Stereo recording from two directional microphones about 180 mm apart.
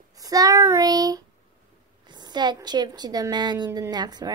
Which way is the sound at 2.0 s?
25° right (ahead or behind).